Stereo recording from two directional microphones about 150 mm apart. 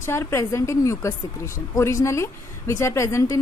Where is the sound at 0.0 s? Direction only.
15° left (ahead or behind).